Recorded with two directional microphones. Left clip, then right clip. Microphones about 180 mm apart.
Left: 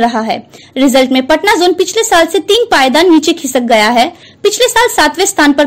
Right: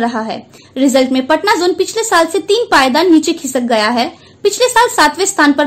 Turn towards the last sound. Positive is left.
turn(degrees=30)  # may be behind; listen again after turning